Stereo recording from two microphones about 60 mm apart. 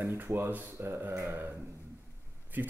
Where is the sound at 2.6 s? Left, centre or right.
Right.